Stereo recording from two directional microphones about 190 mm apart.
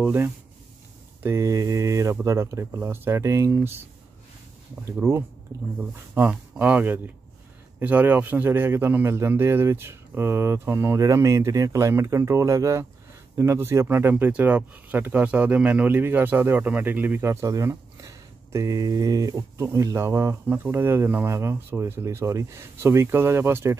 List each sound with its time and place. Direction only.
0.0 s speech: 10° right (ahead or behind)
4.9 s speech: 10° right (ahead or behind)